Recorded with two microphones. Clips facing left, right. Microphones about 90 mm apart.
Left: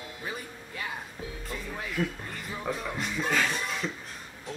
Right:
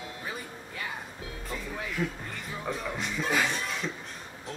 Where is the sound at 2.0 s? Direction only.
10° right (ahead or behind).